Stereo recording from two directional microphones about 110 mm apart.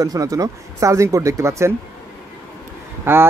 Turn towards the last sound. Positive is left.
turn(degrees=-20)  # may be behind; listen again after turning